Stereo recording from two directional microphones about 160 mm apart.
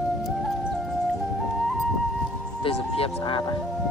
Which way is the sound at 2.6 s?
35° left (ahead or behind).